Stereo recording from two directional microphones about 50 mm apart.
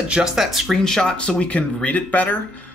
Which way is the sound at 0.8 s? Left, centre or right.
Centre.